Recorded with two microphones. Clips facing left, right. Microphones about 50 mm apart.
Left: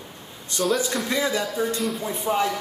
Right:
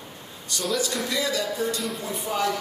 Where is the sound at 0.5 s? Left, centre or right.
Left.